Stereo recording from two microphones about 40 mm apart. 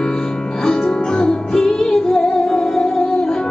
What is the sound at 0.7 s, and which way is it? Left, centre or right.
Music, centre.